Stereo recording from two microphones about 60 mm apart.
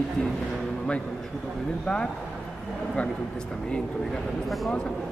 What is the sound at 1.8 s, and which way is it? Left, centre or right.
Speech, centre.